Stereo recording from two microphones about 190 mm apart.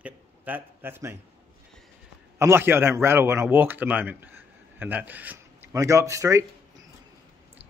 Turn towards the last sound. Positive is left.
turn(degrees=-15)  # may be behind; listen again after turning